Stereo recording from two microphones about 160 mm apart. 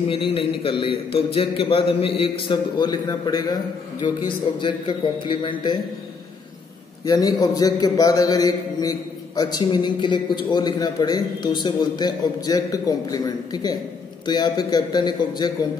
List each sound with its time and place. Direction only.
0.1 s a man's voice: 35° left (ahead or behind)
7.1 s a man's voice: 25° left (ahead or behind)